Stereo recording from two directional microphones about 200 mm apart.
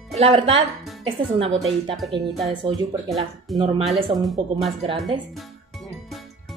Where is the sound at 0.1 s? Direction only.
30° right (ahead or behind).